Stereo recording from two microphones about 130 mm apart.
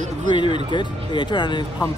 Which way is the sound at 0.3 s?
35° left (ahead or behind).